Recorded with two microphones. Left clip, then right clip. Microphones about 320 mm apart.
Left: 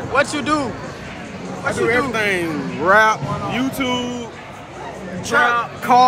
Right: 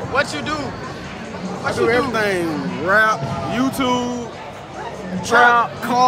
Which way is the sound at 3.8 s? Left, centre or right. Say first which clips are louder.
Right 2 dB; centre.